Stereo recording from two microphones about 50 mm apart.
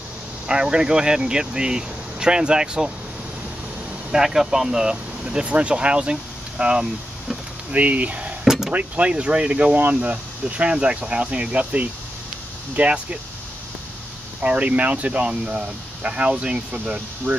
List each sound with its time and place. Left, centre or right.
0.5 s speech: centre
4.1 s speech: centre
7.7 s speech: right
8.5 s a sound: centre
8.7 s speech: right
14.4 s speech: right